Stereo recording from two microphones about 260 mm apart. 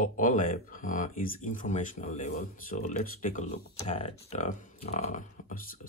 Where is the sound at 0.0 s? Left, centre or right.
Left.